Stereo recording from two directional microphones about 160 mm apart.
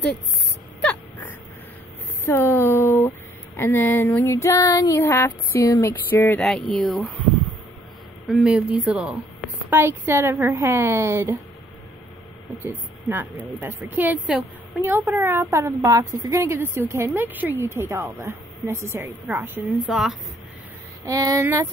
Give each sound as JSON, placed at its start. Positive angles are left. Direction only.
{"t": 2.2, "sound": "a sound", "side_deg": 15}
{"t": 3.5, "sound": "female singing", "side_deg": 10}
{"t": 6.4, "sound": "speech", "side_deg": 5}
{"t": 12.6, "sound": "speech", "side_deg": -10}
{"t": 19.9, "sound": "speech", "side_deg": 0}
{"t": 21.0, "sound": "female singing", "side_deg": -20}